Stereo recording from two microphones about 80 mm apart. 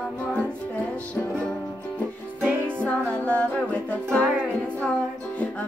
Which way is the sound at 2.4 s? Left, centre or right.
Centre.